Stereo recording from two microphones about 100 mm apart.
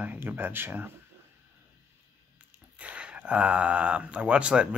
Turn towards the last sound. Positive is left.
turn(degrees=-10)  # may be behind; listen again after turning